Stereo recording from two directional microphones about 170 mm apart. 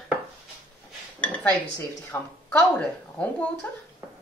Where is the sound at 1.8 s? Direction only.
15° left (ahead or behind).